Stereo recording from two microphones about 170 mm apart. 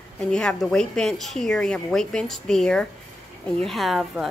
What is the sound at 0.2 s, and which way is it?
A woman's voice, 5° left (ahead or behind).